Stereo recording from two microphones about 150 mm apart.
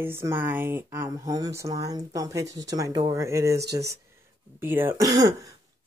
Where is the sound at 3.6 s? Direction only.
90° right.